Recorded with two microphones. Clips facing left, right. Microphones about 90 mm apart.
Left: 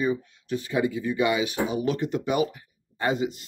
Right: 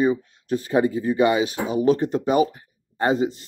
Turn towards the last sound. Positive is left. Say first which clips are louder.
# right 5 dB
turn(degrees=-35)  # may be behind; listen again after turning